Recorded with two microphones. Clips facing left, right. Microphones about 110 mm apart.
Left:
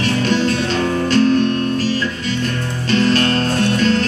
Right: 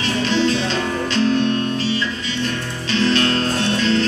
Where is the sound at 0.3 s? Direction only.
50° left (ahead or behind).